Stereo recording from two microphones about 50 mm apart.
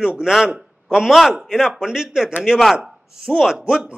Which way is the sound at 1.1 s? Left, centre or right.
Centre.